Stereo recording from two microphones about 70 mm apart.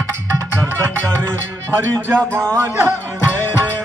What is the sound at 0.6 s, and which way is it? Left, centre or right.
Music, centre.